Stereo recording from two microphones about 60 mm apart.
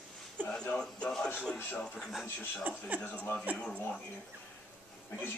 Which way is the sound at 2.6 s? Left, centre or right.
Right.